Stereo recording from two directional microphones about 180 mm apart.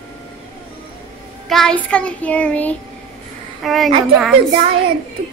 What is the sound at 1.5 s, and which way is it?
Child singing, 5° left (ahead or behind).